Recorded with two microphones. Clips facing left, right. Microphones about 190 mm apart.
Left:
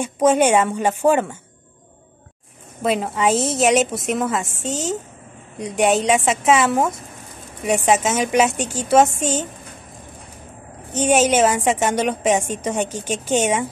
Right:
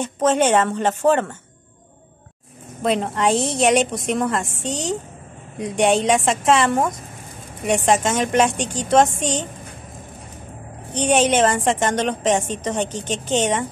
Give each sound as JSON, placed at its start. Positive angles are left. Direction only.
{"t": 0.0, "sound": "a woman's voice", "side_deg": 10}
{"t": 2.8, "sound": "a woman's voice", "side_deg": 5}
{"t": 10.9, "sound": "a woman's voice", "side_deg": 5}